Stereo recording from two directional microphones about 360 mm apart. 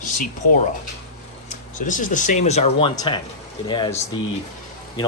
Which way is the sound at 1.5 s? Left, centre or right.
Left.